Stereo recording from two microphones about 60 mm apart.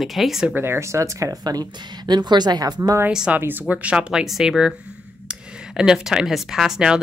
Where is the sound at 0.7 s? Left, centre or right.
Right.